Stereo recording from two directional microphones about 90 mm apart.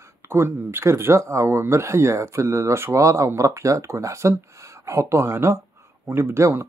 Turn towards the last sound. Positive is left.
turn(degrees=-25)  # may be behind; listen again after turning